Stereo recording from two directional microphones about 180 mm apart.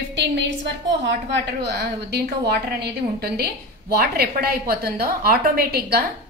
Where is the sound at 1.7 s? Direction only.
65° right (ahead or behind).